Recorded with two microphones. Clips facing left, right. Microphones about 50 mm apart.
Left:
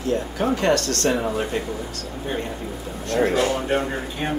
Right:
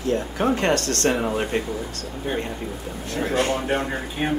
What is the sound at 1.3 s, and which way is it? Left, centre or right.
Speech, right.